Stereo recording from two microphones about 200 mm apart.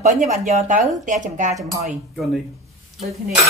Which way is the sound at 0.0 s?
35° right (ahead or behind).